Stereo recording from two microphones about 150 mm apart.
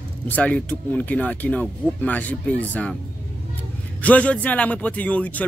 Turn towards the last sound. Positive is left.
turn(degrees=10)  # may be behind; listen again after turning